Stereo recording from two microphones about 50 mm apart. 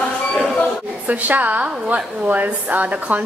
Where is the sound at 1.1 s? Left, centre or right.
Right.